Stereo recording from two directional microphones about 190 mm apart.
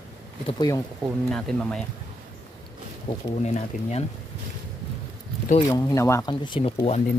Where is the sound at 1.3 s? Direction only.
5° left (ahead or behind).